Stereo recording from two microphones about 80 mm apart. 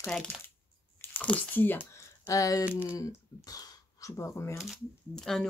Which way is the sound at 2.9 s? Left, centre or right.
Left.